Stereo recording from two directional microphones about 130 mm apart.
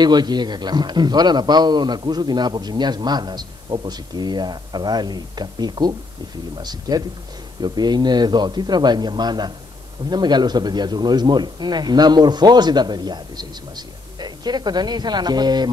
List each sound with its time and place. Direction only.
0.0 s a man's voice: 35° right (ahead or behind)